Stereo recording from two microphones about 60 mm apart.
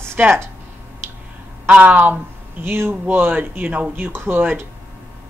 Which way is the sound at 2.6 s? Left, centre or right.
Right.